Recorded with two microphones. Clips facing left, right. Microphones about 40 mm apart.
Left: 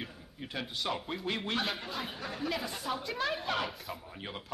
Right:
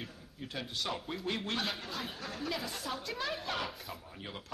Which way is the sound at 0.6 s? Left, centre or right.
Centre.